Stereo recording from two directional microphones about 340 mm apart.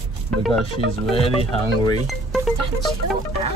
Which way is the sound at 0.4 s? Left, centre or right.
Centre.